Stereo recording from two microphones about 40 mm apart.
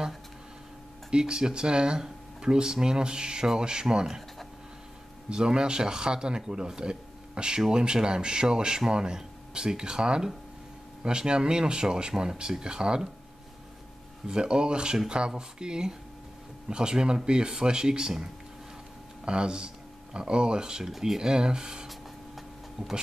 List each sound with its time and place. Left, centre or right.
1.1 s speech: right
5.3 s speech: right
14.2 s speech: right